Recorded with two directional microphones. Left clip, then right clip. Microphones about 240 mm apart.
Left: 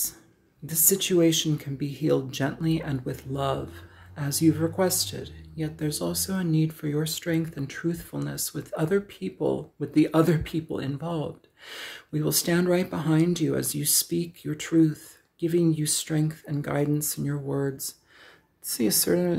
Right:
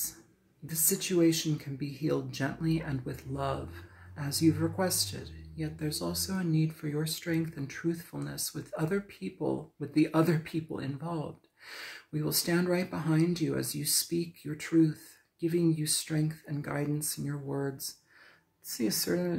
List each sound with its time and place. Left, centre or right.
0.7 s speech: left